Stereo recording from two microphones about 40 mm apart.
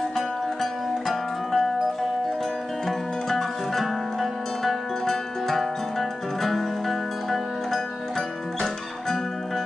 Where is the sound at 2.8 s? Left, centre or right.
Centre.